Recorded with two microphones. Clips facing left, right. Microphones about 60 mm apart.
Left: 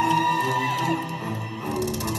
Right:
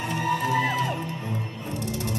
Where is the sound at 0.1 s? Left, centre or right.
Left.